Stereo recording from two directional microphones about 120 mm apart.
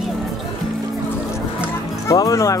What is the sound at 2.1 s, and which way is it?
Speech, 25° left (ahead or behind).